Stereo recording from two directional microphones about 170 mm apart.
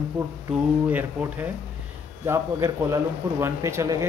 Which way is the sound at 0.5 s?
10° right (ahead or behind).